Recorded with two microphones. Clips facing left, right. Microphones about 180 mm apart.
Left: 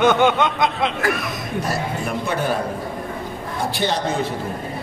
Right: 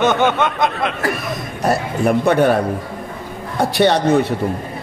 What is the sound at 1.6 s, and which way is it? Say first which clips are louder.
Speech: right 11 dB; 60° right (ahead or behind).